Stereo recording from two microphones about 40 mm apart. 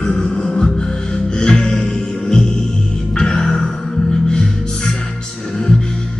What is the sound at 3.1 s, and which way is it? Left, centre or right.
Music, centre.